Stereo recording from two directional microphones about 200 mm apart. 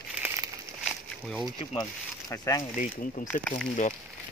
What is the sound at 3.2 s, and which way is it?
Speech, 45° left (ahead or behind).